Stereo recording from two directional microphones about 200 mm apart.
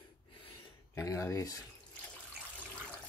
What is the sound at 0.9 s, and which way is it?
Speech, 15° left (ahead or behind).